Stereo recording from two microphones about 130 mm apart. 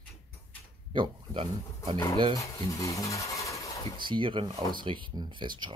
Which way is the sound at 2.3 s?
25° left (ahead or behind).